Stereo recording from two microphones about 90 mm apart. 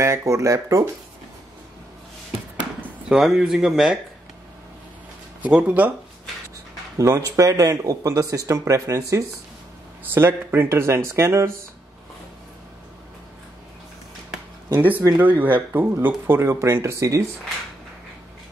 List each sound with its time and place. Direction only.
0.0 s speech: 35° right (ahead or behind)
3.1 s speech: 5° right (ahead or behind)
5.4 s speech: 10° right (ahead or behind)
7.0 s speech: 35° right (ahead or behind)
14.8 s speech: 20° right (ahead or behind); by 17.2 s 35° right (ahead or behind)